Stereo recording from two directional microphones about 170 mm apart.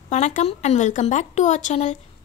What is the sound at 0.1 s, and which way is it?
Speech, 45° left (ahead or behind).